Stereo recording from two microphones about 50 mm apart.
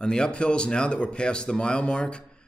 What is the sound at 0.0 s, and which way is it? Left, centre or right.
Speech, centre.